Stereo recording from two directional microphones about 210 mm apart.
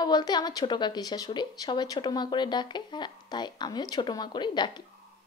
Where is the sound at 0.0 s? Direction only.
20° left (ahead or behind).